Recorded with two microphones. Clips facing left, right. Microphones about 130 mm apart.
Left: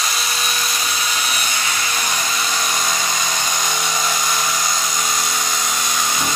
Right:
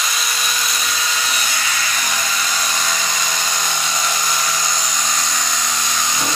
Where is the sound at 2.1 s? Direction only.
15° left (ahead or behind).